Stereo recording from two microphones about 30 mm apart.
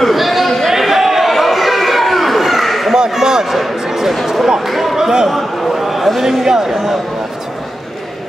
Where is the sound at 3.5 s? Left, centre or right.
Centre.